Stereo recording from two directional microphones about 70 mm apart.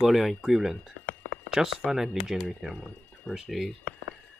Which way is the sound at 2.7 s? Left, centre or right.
Centre.